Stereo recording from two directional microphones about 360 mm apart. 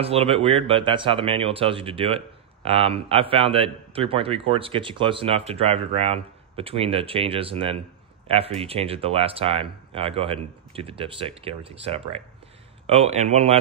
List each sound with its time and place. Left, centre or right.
0.0 s speech: centre